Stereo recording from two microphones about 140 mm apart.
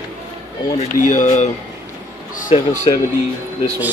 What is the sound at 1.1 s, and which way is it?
Speech, 60° left (ahead or behind).